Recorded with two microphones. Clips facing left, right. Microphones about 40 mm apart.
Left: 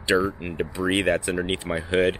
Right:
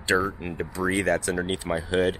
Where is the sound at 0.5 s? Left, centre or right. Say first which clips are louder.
Left 2 dB; left.